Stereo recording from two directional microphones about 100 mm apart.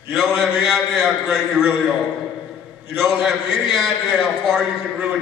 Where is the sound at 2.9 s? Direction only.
5° right (ahead or behind).